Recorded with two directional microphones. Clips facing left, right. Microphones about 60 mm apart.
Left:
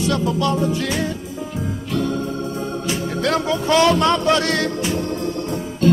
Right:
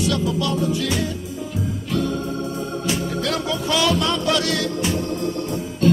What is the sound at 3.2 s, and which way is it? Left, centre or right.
Music, left.